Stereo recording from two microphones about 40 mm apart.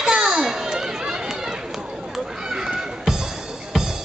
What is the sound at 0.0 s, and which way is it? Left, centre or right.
Children playing, right.